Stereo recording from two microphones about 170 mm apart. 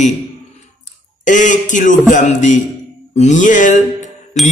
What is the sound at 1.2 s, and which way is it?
A man's voice, 45° left (ahead or behind).